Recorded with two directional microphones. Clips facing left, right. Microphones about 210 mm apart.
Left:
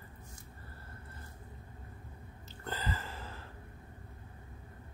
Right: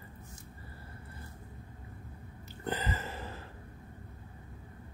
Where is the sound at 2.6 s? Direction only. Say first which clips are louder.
Right 4 dB; 20° right (ahead or behind).